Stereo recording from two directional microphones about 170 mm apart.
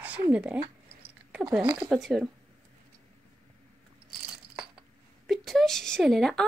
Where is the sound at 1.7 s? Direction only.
5° right (ahead or behind).